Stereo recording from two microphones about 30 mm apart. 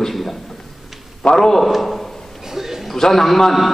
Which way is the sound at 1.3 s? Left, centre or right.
Centre.